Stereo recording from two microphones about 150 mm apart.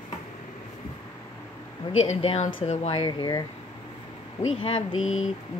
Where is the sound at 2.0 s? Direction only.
40° left (ahead or behind).